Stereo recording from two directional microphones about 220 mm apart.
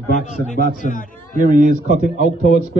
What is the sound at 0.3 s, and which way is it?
A man's voice, 35° left (ahead or behind).